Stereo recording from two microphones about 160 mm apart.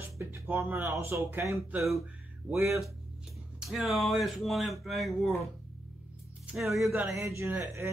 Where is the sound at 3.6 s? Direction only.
Centre (ahead or behind).